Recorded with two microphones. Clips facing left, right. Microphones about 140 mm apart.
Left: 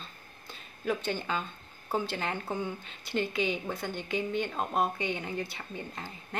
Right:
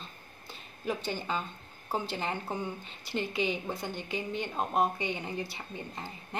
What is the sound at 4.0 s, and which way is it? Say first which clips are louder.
Speech: left 3 dB; 55° left (ahead or behind).